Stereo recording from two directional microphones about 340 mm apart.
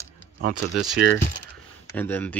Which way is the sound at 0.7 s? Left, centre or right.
Centre.